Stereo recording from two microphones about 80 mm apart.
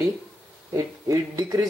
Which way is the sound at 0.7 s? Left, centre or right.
Right.